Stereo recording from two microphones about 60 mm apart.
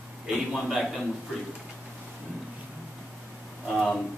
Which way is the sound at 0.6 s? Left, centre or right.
Centre.